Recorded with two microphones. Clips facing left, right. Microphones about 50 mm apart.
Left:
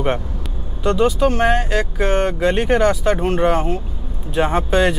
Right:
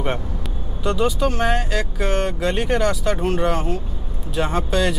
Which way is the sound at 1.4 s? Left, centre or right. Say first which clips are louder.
Left 4 dB; centre.